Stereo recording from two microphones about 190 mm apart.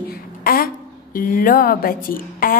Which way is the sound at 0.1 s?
50° left (ahead or behind).